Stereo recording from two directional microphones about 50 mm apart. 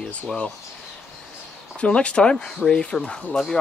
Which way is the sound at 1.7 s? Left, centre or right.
Left.